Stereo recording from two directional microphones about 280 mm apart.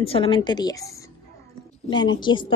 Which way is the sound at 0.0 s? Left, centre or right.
Centre.